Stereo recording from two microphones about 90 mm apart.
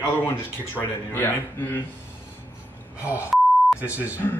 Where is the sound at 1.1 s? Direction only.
25° left (ahead or behind).